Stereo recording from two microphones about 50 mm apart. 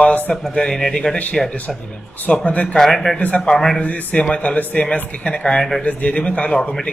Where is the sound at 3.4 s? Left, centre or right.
Centre.